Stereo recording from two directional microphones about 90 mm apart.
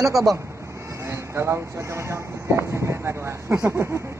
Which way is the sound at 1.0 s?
30° right (ahead or behind).